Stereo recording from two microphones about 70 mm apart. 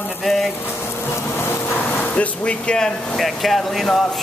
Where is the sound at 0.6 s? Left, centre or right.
Left.